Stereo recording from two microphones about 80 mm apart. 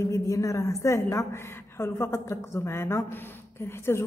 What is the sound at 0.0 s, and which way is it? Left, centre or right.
A man's voice, left.